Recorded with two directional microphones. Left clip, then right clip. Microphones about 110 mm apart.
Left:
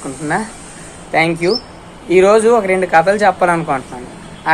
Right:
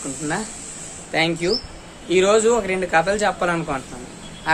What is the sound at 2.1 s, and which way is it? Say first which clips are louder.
A man's voice: left 7 dB; 20° right (ahead or behind).